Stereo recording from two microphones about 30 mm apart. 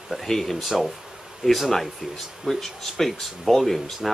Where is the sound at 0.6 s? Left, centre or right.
Centre.